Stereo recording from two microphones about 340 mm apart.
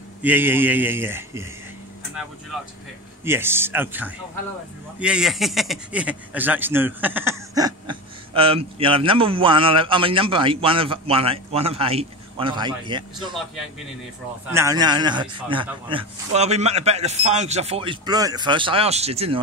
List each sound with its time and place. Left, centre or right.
0.2 s speech: centre
3.3 s a man's voice: centre
14.5 s a man's voice: centre